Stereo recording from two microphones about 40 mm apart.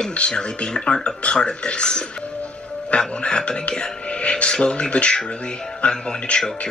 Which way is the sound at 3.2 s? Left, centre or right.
Left.